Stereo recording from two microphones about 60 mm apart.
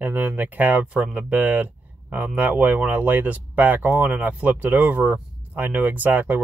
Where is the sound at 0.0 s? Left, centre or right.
Right.